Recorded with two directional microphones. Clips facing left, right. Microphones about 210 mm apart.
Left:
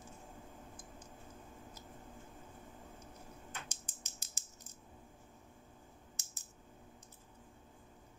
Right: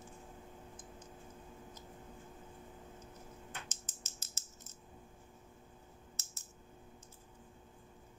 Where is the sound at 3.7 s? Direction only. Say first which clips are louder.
Right 1 dB; 15° left (ahead or behind).